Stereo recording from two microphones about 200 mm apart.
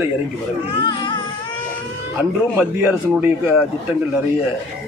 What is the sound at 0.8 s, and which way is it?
Baby cry, 20° left (ahead or behind).